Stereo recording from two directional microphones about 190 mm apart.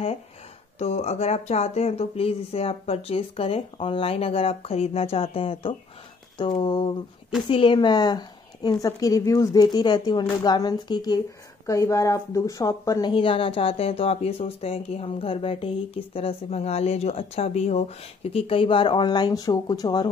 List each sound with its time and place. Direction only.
0.7 s a woman's voice: 35° left (ahead or behind)